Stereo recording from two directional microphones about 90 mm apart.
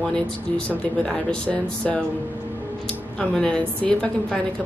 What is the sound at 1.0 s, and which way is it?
Speech, 10° left (ahead or behind).